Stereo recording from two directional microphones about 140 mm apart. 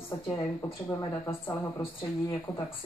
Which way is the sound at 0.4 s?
15° left (ahead or behind).